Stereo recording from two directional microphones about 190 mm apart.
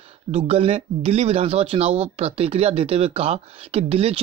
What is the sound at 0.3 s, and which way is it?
Speech, 30° right (ahead or behind).